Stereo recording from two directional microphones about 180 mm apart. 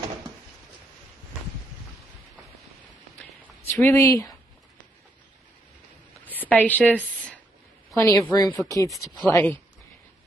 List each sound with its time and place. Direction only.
3.6 s speech: 15° left (ahead or behind)
6.2 s a sound: 10° left (ahead or behind)
7.9 s a woman's voice: 15° left (ahead or behind)